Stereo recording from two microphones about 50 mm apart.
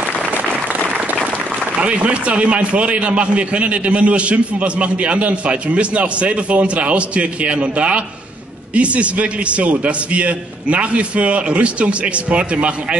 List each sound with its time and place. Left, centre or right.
1.8 s a man's voice: right